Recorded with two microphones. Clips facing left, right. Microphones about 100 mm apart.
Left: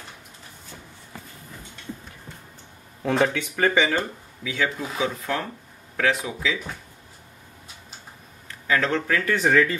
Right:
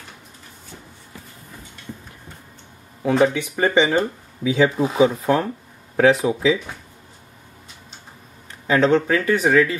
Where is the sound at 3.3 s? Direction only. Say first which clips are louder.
Right 2 dB; 15° right (ahead or behind).